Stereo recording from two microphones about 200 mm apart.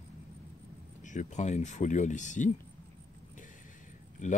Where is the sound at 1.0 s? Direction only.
40° left (ahead or behind).